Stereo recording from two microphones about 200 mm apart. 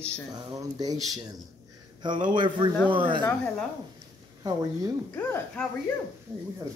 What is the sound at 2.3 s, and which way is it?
Speech, 25° right (ahead or behind).